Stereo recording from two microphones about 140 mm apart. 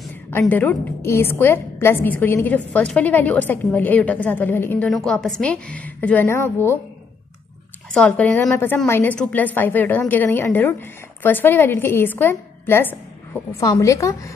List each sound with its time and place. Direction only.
0.3 s a woman's voice: 15° left (ahead or behind)
7.9 s a woman's voice: 10° left (ahead or behind)